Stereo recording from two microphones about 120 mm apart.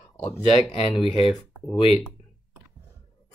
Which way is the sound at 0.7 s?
55° left (ahead or behind).